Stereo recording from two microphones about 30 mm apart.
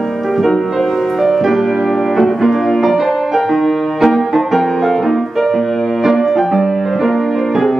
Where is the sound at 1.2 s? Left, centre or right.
Centre.